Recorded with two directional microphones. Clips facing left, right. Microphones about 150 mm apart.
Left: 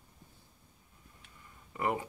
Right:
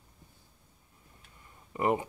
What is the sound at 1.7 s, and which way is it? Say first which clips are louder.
Speech: right 5 dB; 20° right (ahead or behind).